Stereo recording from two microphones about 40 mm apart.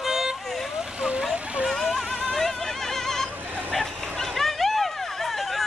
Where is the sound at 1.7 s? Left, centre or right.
Centre.